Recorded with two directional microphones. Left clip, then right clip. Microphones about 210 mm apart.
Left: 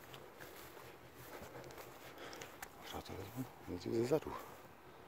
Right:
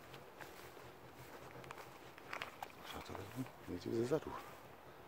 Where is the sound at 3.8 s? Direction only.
20° left (ahead or behind).